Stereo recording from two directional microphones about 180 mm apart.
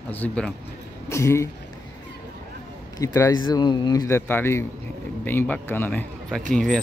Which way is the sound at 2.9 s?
15° left (ahead or behind).